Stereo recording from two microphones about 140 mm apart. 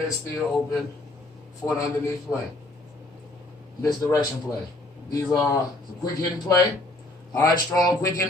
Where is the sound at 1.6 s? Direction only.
10° left (ahead or behind).